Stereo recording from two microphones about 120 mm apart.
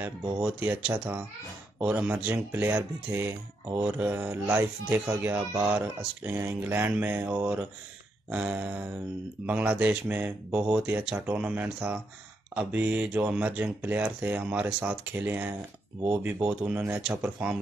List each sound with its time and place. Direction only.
0.4 s speech: 15° right (ahead or behind)